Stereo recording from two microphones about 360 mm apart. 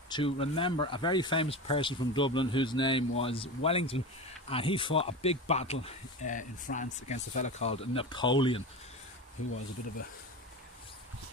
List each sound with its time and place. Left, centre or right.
0.1 s speech: centre